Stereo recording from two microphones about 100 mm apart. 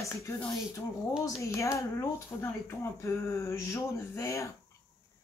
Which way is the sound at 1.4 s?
30° left (ahead or behind).